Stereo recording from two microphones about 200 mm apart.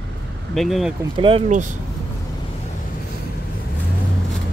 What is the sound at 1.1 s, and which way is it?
Speech, 25° right (ahead or behind).